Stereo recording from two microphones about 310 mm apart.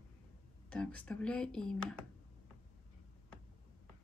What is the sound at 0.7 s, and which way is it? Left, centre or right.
Speech, centre.